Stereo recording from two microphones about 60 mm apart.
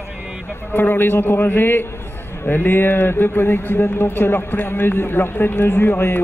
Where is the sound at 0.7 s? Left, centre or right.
Left.